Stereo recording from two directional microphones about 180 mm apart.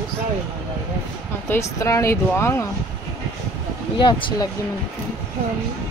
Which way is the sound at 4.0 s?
25° left (ahead or behind).